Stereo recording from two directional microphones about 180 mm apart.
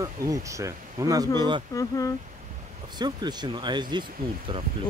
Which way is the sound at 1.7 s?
20° left (ahead or behind).